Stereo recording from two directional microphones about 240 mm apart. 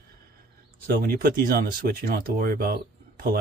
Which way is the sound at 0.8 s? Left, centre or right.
Right.